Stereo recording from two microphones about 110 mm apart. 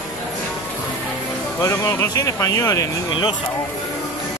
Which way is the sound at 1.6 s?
25° left (ahead or behind).